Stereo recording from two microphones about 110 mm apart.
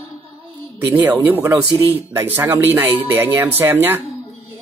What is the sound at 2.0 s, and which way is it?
Speech, 20° right (ahead or behind).